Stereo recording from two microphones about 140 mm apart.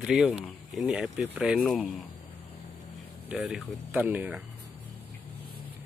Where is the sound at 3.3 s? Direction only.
10° right (ahead or behind).